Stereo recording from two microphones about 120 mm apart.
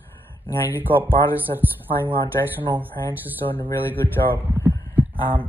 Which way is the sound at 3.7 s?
20° left (ahead or behind).